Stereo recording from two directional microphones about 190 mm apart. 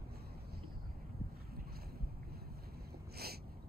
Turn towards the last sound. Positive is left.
turn(degrees=-55)  # may be behind; listen again after turning